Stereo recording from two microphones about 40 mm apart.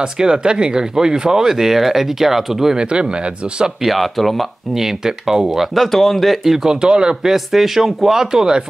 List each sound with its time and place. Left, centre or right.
0.0 s speech: right
2.8 s speech: right
3.8 s speech: centre
4.7 s speech: centre
5.9 s speech: centre
6.8 s speech: right
7.2 s speech: centre